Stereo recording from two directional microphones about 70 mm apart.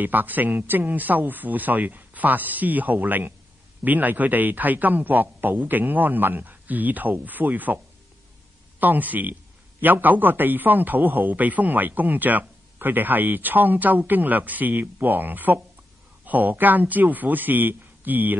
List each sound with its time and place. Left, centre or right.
0.0 s a man's voice: right